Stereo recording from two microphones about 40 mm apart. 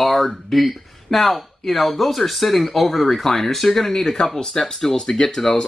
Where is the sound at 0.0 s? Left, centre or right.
Centre.